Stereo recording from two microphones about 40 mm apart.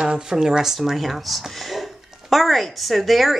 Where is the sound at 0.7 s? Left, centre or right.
Centre.